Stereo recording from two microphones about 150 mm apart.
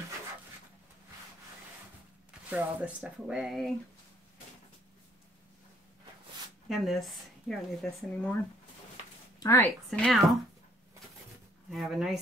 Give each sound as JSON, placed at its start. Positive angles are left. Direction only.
{"t": 2.5, "sound": "speech", "side_deg": -5}
{"t": 6.7, "sound": "speech", "side_deg": 0}
{"t": 9.4, "sound": "speech", "side_deg": 20}
{"t": 9.8, "sound": "speech", "side_deg": 5}
{"t": 11.7, "sound": "speech", "side_deg": 0}